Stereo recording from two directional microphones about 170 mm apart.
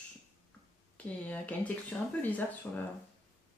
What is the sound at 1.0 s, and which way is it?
Speech, 10° left (ahead or behind).